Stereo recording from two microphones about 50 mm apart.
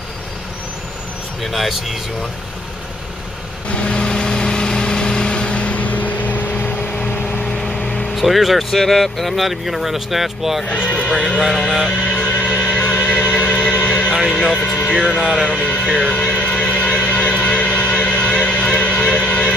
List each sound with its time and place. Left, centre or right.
1.4 s speech: centre
3.6 s vehicle: left
7.2 s a sound: centre
8.2 s speech: centre
10.7 s speech: left
11.4 s music: centre; by 14.1 s left
15.1 s speech: centre
15.5 s speech: left
16.1 s a sound: left